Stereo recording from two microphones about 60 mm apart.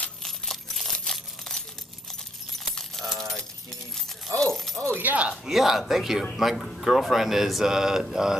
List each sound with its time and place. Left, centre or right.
0.2 s coin: centre
1.0 s crumpling: centre
2.7 s keys jangling: centre
4.4 s speech: centre
4.9 s speech: right
5.4 s speech: centre